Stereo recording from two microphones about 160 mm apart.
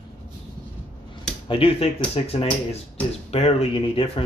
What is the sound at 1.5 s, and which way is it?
Speech, 35° left (ahead or behind).